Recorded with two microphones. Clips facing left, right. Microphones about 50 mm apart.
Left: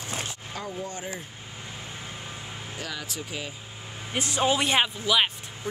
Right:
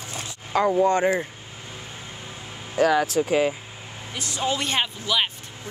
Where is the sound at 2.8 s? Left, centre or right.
Right.